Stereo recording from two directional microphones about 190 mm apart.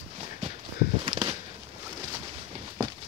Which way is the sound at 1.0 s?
30° right (ahead or behind).